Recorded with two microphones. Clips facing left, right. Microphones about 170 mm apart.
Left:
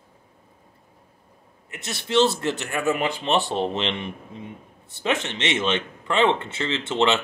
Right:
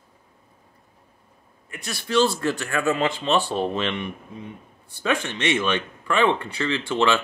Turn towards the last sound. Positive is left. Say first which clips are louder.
# even
turn(degrees=20)  # may be behind; listen again after turning